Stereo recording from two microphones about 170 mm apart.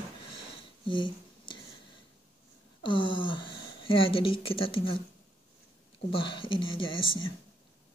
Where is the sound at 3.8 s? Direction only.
30° left (ahead or behind).